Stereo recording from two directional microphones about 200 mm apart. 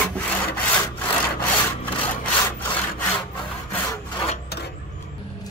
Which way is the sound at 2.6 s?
10° left (ahead or behind).